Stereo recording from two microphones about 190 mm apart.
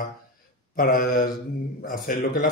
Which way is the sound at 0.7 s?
50° left (ahead or behind).